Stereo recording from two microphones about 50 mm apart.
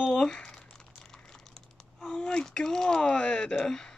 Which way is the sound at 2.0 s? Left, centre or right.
Centre.